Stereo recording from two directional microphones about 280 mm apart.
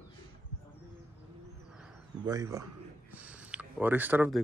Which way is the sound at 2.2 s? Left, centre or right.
Centre.